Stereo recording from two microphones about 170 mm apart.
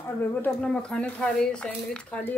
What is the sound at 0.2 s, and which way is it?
Speech, 10° left (ahead or behind).